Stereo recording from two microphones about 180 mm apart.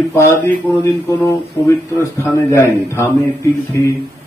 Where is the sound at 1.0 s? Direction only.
20° left (ahead or behind).